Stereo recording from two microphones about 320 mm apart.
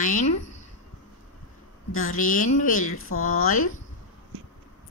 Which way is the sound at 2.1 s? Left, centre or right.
Left.